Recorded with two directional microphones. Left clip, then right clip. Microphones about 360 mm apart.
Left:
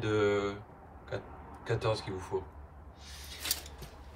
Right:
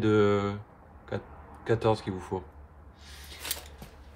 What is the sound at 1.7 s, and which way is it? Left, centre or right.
Speech, right.